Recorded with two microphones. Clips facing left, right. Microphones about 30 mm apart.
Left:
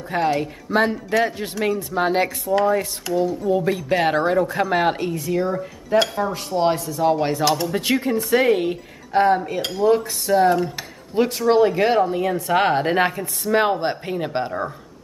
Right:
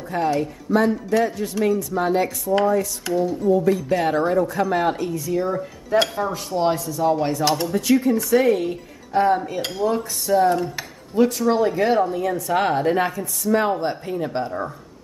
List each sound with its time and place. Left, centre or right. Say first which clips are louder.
0.1 s a woman's voice: left 1 dB; left
2.5 s cutlery: even; centre
3.1 s dishes: left 1 dB; centre
3.4 s speech: right 2 dB; left
5.5 s cutlery: left 1 dB; centre
6.3 s speech: left 1 dB; left
7.4 s dishes: left 1 dB; centre
7.7 s speech: right 2 dB; left
9.6 s dishes: left 2 dB; centre
9.8 s speech: left 5 dB; left
10.5 s cutlery: left 2 dB; centre
11.1 s speech: left 1 dB; left